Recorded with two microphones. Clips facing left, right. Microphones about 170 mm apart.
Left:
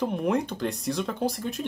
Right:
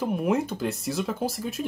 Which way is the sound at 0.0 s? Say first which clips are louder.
Right 1 dB; 5° right (ahead or behind).